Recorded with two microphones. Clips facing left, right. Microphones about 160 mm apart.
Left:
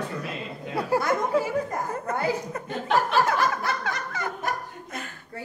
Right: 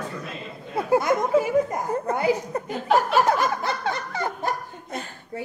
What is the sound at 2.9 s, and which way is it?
Snicker, 20° right (ahead or behind).